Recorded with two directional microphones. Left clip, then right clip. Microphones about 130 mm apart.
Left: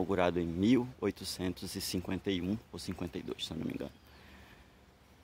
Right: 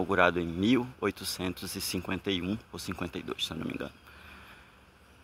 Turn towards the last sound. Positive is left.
turn(degrees=15)  # may be behind; listen again after turning